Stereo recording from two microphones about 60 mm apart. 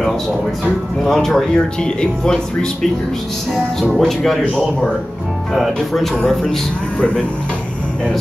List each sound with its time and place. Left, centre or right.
0.7 s speech: centre
3.9 s speech: centre
5.5 s speech: centre